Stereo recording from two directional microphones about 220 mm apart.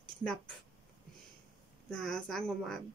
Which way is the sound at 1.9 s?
5° left (ahead or behind).